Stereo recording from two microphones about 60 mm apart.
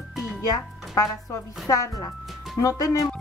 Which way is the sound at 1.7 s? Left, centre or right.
Left.